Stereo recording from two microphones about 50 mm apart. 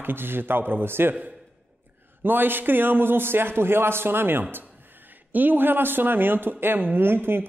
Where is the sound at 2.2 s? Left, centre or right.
Right.